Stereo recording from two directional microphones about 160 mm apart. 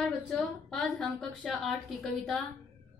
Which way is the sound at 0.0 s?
5° left (ahead or behind).